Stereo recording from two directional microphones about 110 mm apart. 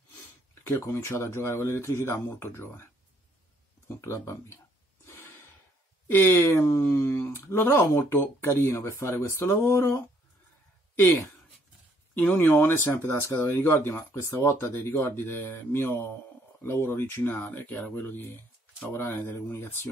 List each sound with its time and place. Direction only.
0.7 s speech: 25° left (ahead or behind)
5.0 s gasp: 25° left (ahead or behind)
6.0 s speech: 20° left (ahead or behind)
12.2 s speech: 15° left (ahead or behind)